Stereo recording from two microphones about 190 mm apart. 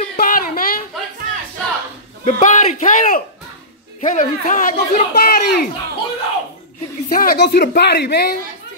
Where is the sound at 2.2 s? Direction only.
40° left (ahead or behind).